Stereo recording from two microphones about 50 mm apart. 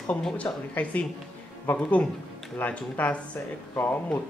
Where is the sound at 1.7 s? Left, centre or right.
Left.